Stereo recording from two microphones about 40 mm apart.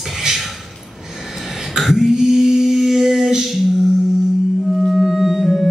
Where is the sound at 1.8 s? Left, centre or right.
Centre.